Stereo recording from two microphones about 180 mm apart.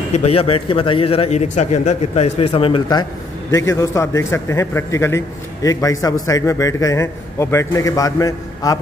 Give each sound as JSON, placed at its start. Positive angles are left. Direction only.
{"t": 0.1, "sound": "a man's voice", "side_deg": 35}
{"t": 3.5, "sound": "a man's voice", "side_deg": 15}